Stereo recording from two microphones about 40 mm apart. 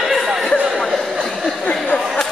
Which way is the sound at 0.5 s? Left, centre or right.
Right.